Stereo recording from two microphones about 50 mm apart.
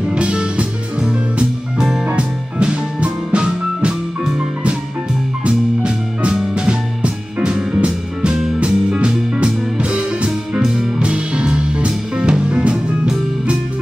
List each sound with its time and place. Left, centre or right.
0.1 s music: centre
5.4 s music: right